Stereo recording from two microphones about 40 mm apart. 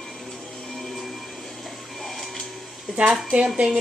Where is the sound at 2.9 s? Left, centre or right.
Right.